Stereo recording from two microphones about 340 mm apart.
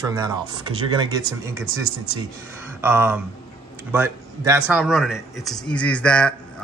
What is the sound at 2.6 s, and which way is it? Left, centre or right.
A man's voice, centre.